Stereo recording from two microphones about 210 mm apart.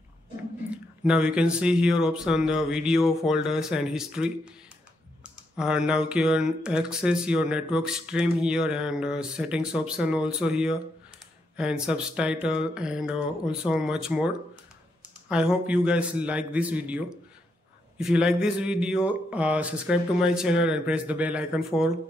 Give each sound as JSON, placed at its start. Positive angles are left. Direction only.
{"t": 0.7, "sound": "speech", "side_deg": -5}